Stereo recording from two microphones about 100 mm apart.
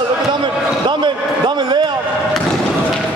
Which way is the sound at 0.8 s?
50° right (ahead or behind).